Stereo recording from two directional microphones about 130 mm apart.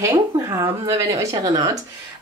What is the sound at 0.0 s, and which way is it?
Speech, 25° right (ahead or behind).